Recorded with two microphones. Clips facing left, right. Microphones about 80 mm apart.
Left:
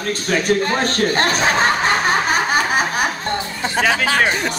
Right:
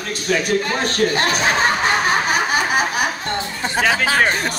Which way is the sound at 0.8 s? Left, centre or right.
Left.